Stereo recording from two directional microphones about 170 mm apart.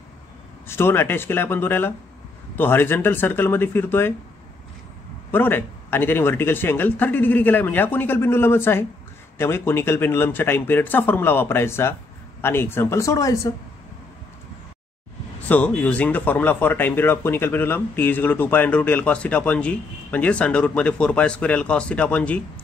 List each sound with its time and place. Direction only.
0.7 s speech: 15° left (ahead or behind)
5.3 s speech: 10° left (ahead or behind)
15.4 s speech: 10° left (ahead or behind)